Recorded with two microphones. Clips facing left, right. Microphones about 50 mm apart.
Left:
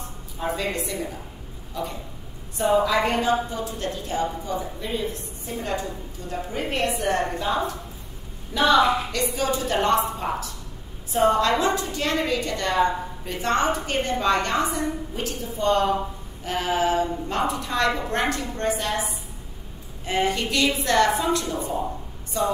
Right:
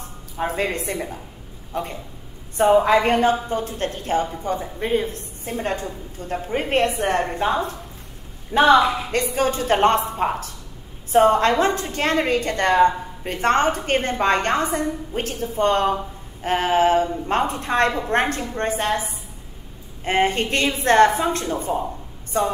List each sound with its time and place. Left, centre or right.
0.6 s a woman's voice: right
20.1 s a woman's voice: right